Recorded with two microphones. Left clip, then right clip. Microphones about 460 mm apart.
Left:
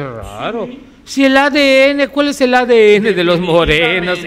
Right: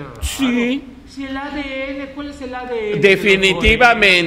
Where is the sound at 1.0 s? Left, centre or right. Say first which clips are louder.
Left 17 dB; left.